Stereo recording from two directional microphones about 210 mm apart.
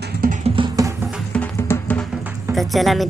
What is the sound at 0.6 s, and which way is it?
Music, 15° right (ahead or behind).